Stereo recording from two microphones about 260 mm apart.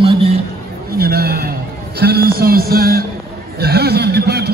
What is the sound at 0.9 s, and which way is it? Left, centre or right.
A man's voice, right.